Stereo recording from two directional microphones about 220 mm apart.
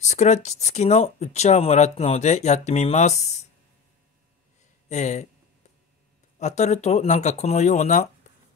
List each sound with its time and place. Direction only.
0.0 s speech: 30° left (ahead or behind)
4.8 s speech: 30° left (ahead or behind)
6.4 s speech: 30° left (ahead or behind)